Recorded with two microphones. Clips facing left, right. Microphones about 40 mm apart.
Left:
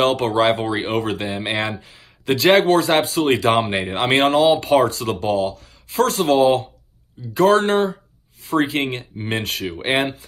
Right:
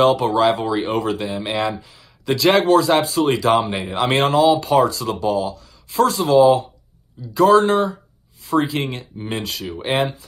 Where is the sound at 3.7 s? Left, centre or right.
Left.